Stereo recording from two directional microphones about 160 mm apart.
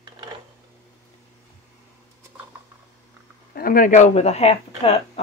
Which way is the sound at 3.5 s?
60° left (ahead or behind).